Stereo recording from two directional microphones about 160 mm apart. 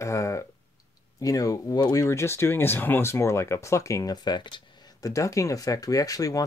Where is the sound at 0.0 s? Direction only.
20° left (ahead or behind).